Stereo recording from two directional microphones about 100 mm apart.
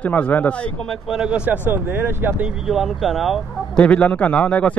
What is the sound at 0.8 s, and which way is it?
Speech, centre (ahead or behind).